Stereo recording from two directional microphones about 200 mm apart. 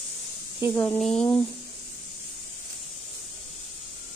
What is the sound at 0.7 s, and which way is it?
Speech, 10° left (ahead or behind).